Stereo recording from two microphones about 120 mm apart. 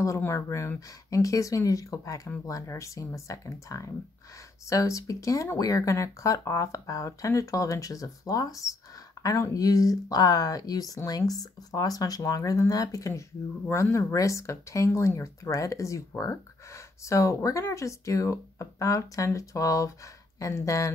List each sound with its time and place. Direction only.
0.0 s speech: 25° left (ahead or behind)